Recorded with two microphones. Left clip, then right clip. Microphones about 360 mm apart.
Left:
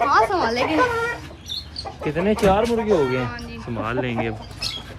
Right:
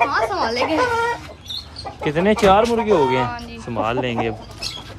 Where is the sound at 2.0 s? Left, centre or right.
Centre.